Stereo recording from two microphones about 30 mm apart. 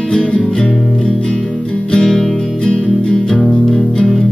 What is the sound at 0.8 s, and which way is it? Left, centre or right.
Music, centre.